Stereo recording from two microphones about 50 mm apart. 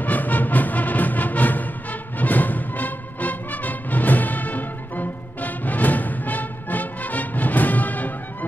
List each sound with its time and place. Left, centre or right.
0.0 s music: left